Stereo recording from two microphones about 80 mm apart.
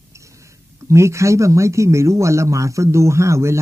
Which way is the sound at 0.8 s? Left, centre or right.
Right.